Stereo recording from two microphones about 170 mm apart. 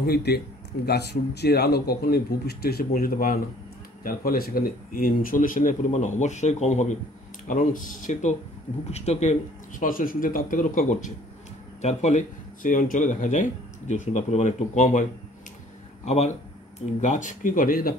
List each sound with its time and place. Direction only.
0.0 s a man's voice: 70° left (ahead or behind); by 15.0 s 45° left (ahead or behind)
17.0 s speech: 45° left (ahead or behind)